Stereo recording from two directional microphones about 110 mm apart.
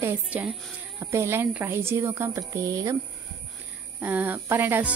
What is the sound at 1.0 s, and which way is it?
Speech, 25° right (ahead or behind).